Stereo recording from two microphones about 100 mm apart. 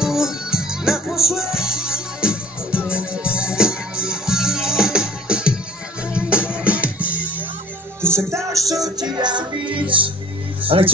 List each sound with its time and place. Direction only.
0.0 s music: 5° right (ahead or behind)
8.0 s music: 25° right (ahead or behind)
8.8 s music: 45° right (ahead or behind); by 10.9 s 65° right (ahead or behind)